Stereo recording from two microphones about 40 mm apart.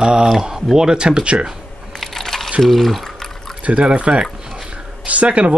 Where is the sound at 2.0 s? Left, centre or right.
Centre.